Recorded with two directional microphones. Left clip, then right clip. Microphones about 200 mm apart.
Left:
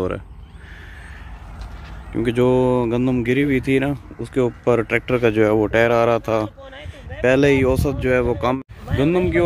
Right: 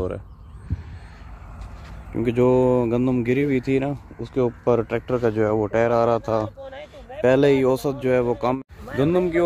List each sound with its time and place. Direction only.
2.1 s speech: 5° right (ahead or behind)
6.6 s a sound: 50° right (ahead or behind)
7.2 s speech: 10° right (ahead or behind)